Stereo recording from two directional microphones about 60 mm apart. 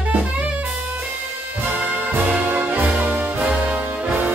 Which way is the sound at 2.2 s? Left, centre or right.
Right.